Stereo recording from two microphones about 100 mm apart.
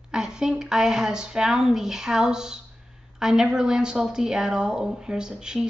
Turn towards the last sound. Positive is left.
turn(degrees=-5)  # may be behind; listen again after turning